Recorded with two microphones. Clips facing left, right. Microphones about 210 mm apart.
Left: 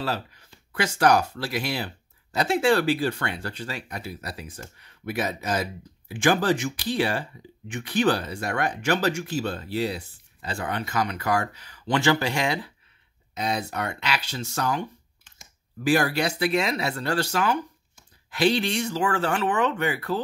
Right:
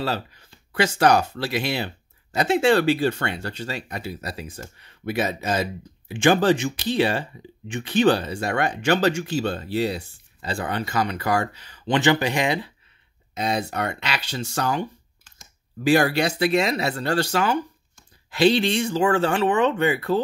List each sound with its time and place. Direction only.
0.7 s speech: 25° right (ahead or behind)
13.9 s speech: 25° right (ahead or behind)